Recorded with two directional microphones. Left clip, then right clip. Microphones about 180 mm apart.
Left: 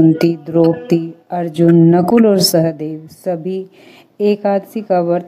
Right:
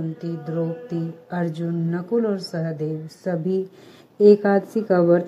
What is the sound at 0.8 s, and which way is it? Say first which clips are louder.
A woman's voice: left 13 dB; 25° left (ahead or behind).